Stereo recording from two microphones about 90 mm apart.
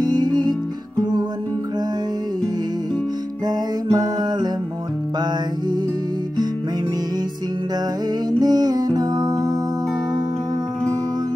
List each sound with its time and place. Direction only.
0.0 s music: 50° right (ahead or behind)
3.4 s music: 50° right (ahead or behind)
8.3 s music: 50° right (ahead or behind)